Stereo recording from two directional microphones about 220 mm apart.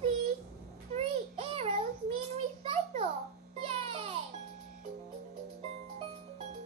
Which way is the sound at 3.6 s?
30° right (ahead or behind).